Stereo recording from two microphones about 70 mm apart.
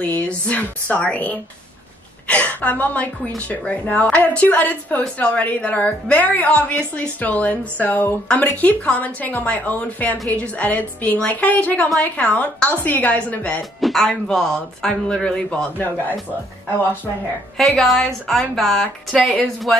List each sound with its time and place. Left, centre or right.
0.0 s a woman's voice: left
13.6 s speech: centre
17.6 s speech: centre